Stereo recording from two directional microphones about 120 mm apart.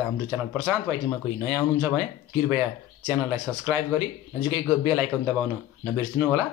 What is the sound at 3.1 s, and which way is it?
Speech, 15° right (ahead or behind).